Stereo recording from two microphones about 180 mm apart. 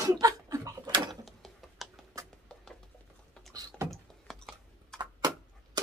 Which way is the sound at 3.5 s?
15° right (ahead or behind).